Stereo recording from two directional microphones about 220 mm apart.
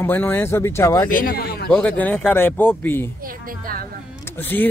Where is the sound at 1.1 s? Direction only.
40° left (ahead or behind).